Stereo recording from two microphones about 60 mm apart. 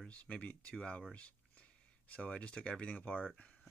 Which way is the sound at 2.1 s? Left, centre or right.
Left.